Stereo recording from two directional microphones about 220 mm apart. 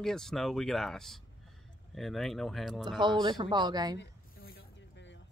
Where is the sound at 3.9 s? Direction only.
50° left (ahead or behind).